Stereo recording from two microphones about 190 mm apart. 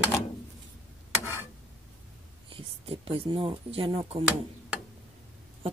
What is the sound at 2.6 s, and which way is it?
Speech, 30° right (ahead or behind).